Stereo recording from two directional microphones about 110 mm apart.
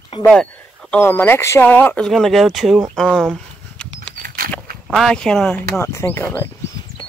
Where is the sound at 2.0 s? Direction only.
Centre (ahead or behind).